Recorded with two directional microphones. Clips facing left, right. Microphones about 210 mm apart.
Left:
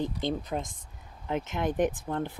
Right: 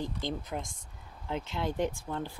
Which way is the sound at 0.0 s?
20° left (ahead or behind).